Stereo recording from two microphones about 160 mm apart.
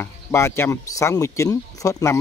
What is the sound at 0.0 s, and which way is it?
Speech, 15° left (ahead or behind).